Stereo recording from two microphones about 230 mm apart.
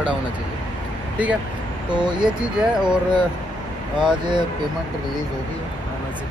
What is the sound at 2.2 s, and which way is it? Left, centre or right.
Speech, centre.